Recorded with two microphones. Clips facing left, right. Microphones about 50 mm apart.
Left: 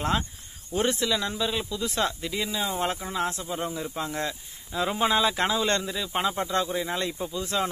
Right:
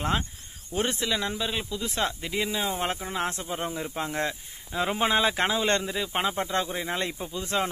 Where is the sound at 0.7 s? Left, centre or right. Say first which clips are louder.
Left 2 dB; right.